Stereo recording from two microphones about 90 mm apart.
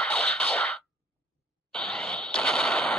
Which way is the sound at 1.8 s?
10° left (ahead or behind).